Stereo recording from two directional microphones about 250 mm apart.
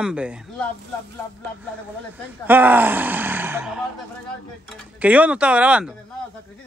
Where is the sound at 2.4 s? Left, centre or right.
Centre.